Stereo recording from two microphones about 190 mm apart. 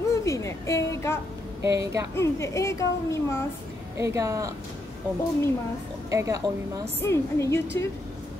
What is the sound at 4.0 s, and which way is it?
Speech, 15° right (ahead or behind).